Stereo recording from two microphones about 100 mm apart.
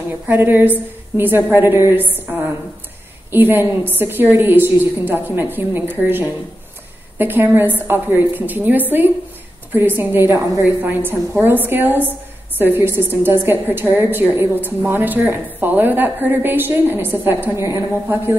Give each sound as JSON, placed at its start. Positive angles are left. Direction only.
{"t": 0.3, "sound": "a woman's voice", "side_deg": -20}
{"t": 3.3, "sound": "a woman's voice", "side_deg": -20}